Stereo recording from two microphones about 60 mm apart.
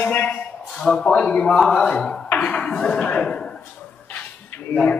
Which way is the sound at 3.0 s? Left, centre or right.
Left.